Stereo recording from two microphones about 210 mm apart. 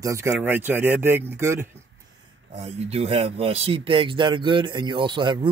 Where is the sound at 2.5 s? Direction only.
30° right (ahead or behind).